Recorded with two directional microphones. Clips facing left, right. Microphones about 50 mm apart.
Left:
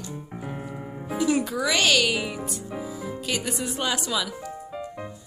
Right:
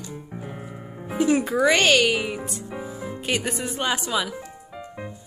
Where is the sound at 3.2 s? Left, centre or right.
Right.